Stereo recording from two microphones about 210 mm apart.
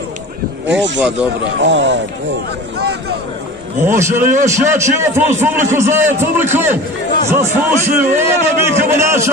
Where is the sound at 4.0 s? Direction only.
10° right (ahead or behind).